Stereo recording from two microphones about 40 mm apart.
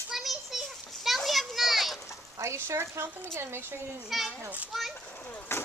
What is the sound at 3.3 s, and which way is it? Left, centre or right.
Speech, right.